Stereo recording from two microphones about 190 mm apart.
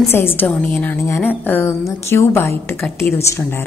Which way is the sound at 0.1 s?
10° left (ahead or behind).